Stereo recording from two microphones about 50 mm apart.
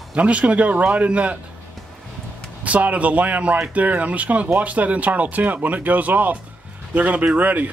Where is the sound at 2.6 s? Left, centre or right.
Right.